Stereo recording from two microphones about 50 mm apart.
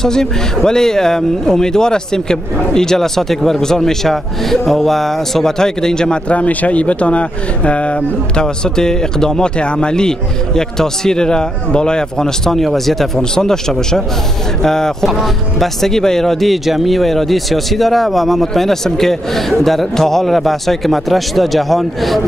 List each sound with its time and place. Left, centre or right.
0.0 s speech: centre
6.3 s speech: left; by 22.2 s centre